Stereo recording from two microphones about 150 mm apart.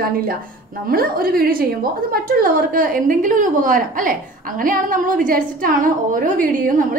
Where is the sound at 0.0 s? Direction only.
80° right.